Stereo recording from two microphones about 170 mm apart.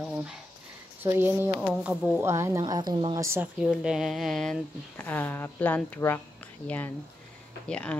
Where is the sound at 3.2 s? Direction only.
15° right (ahead or behind).